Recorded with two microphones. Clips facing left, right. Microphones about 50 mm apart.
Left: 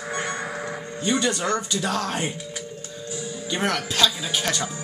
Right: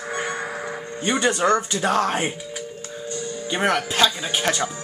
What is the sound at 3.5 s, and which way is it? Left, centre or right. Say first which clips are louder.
Speech: right 4 dB; centre.